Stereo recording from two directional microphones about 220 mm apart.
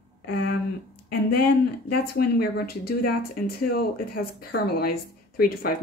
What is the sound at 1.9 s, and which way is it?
Speech, 45° left (ahead or behind).